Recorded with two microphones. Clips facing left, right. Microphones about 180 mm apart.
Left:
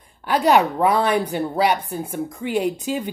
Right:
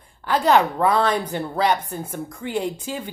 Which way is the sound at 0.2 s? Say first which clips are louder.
Left 1 dB; 15° left (ahead or behind).